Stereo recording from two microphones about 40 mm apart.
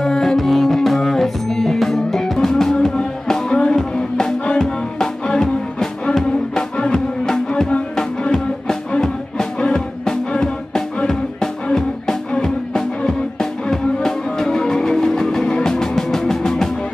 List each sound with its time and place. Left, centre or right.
0.0 s music: centre